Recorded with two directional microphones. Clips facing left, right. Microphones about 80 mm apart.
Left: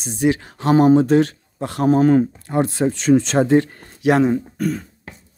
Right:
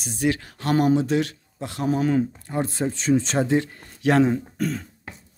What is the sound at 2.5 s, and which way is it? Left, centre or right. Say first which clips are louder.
Speech: left 8 dB; left.